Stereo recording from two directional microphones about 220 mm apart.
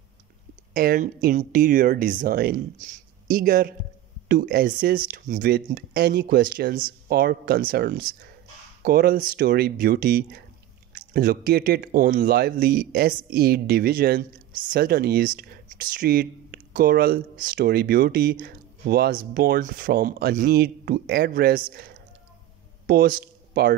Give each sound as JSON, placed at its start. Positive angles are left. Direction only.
{"t": 0.7, "sound": "speech", "side_deg": -40}